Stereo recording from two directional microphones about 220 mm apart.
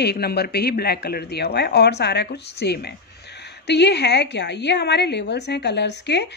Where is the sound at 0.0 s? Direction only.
45° left (ahead or behind).